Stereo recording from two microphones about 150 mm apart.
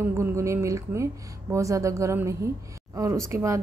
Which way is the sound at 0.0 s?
15° right (ahead or behind).